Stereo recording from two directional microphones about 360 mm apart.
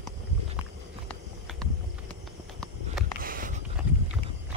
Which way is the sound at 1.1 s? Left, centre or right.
Centre.